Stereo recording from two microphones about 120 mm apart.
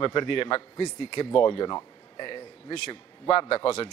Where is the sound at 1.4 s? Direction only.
40° left (ahead or behind).